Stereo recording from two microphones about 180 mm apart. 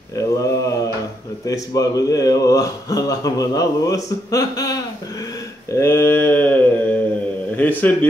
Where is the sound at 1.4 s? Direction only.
20° left (ahead or behind).